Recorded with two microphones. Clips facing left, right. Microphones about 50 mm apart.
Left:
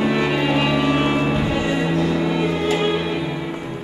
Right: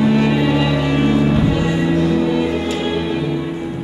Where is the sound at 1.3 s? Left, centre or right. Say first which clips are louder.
Right 3 dB; centre.